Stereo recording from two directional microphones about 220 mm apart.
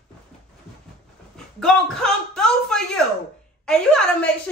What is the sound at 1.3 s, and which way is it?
A man's voice, centre (ahead or behind).